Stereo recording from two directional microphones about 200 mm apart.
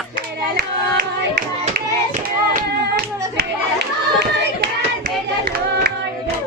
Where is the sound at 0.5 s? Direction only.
45° right (ahead or behind).